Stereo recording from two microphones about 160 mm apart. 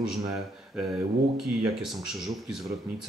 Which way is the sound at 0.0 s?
5° right (ahead or behind).